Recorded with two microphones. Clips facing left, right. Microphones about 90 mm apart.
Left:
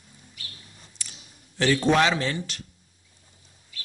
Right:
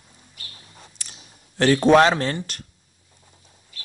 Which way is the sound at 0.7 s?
55° right (ahead or behind).